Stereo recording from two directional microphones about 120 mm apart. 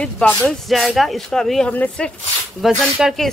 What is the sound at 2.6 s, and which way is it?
Speech, 5° right (ahead or behind).